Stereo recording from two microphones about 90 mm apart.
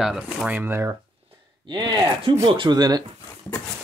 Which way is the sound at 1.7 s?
50° right (ahead or behind).